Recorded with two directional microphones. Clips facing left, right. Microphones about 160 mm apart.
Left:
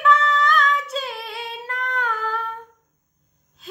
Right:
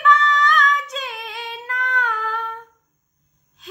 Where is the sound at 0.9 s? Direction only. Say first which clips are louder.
Left 2 dB; 30° left (ahead or behind).